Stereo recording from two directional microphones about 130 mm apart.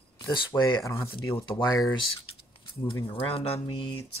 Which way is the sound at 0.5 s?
20° left (ahead or behind).